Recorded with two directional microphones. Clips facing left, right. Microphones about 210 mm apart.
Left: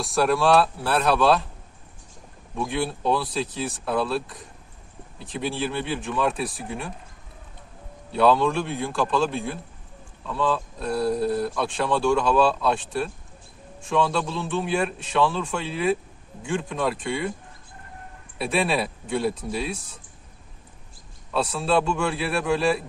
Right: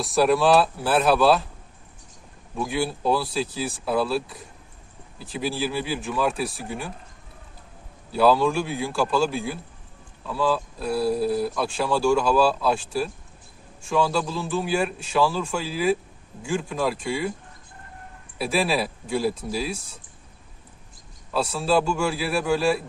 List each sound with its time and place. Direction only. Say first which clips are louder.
0.0 s speech: right 2 dB; centre (ahead or behind)
2.5 s speech: right 1 dB; 5° right (ahead or behind)
8.1 s speech: even; 5° right (ahead or behind)
18.4 s speech: even; centre (ahead or behind)
21.3 s speech: right 1 dB; centre (ahead or behind)